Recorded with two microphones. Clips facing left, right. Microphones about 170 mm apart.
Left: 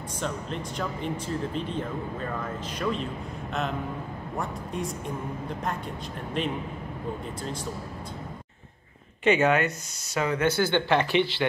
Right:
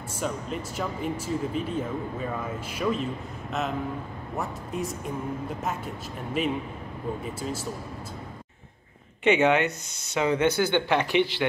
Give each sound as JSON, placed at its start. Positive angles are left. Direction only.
{"t": 0.2, "sound": "speech", "side_deg": -5}
{"t": 4.4, "sound": "a woman's voice", "side_deg": 0}
{"t": 9.2, "sound": "speech", "side_deg": -15}